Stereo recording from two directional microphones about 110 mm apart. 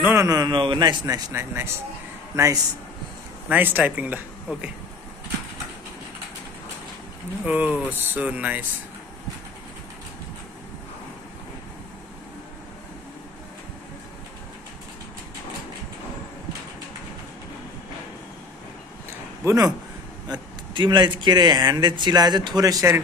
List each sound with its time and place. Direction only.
0.1 s speech: 30° right (ahead or behind)
0.5 s speech: 45° right (ahead or behind)
1.3 s speech: 20° right (ahead or behind)
3.4 s speech: 15° right (ahead or behind)
7.4 s speech: 15° right (ahead or behind)
19.4 s a man's voice: 30° right (ahead or behind)
20.2 s speech: 45° right (ahead or behind); by 23.0 s 30° right (ahead or behind)